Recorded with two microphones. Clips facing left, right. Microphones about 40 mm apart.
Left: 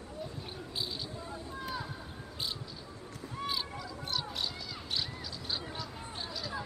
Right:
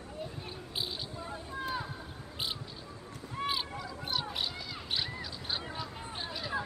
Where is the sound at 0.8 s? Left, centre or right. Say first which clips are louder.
Right 1 dB; right.